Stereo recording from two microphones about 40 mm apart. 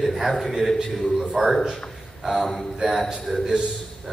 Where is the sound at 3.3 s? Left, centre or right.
Centre.